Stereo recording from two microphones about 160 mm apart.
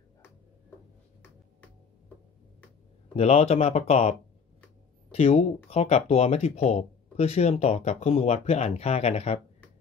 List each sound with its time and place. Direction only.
3.2 s speech: 40° left (ahead or behind)